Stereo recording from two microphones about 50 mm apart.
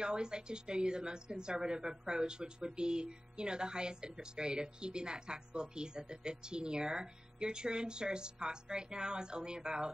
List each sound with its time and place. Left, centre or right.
0.0 s speech: centre